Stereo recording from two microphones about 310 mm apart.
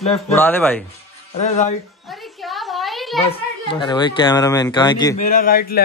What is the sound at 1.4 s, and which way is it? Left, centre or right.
Speech, left.